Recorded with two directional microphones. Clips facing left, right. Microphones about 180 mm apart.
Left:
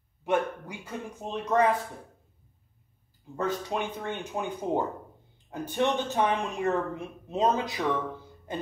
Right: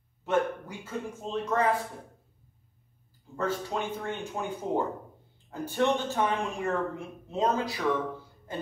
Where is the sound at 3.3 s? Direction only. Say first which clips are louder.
Left 1 dB; 20° left (ahead or behind).